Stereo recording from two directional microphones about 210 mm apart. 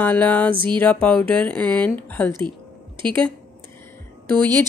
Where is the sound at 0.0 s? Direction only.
5° left (ahead or behind).